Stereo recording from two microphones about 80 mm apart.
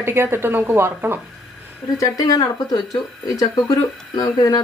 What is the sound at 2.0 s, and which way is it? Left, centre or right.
Speech, left.